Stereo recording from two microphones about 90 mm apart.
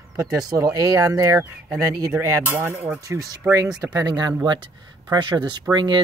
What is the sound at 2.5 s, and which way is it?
Speech, 20° right (ahead or behind).